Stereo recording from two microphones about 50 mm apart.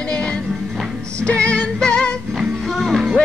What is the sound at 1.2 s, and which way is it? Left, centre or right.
Music, left.